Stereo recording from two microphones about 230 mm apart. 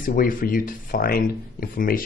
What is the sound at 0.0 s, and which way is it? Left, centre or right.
Speech, left.